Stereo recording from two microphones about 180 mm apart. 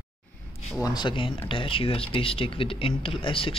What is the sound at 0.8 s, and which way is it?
Speech, 25° left (ahead or behind).